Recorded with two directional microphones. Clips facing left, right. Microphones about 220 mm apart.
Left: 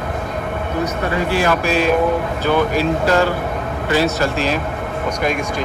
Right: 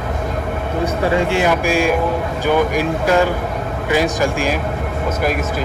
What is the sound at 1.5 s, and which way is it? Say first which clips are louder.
Speech: even; 10° right (ahead or behind).